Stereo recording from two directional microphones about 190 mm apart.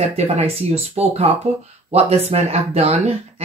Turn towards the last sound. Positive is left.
turn(degrees=-30)  # may be behind; listen again after turning